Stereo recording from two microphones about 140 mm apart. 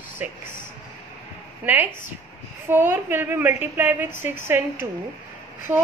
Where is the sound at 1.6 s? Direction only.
15° right (ahead or behind).